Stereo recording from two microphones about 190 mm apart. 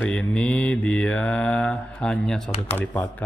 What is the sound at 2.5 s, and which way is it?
Speech, 30° left (ahead or behind).